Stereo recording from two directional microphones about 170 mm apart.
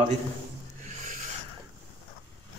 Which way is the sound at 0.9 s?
50° right (ahead or behind).